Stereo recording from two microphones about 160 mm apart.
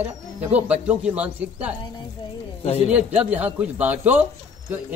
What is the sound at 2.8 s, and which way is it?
A man's voice, 10° right (ahead or behind).